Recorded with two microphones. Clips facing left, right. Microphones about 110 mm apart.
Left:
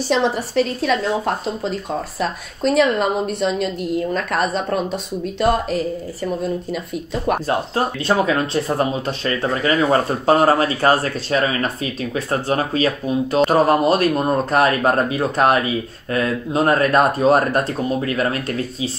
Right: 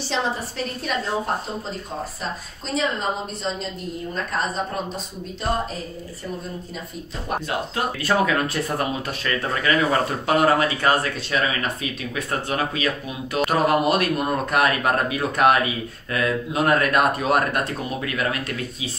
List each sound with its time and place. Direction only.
0.1 s a woman's voice: 80° left
2.1 s a woman's voice: 65° left (ahead or behind)
7.4 s speech: 30° left (ahead or behind)